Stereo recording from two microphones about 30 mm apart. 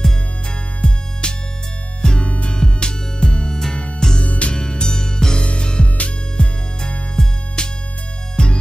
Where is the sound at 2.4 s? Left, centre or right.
Left.